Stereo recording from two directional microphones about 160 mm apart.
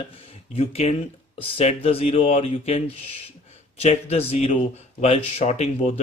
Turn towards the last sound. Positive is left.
turn(degrees=40)  # may be behind; listen again after turning